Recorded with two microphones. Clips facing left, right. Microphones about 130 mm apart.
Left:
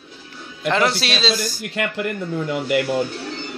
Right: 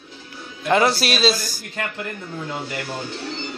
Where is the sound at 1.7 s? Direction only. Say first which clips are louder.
Left 5 dB; 75° left (ahead or behind).